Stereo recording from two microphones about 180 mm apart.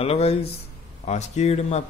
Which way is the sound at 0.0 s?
35° left (ahead or behind).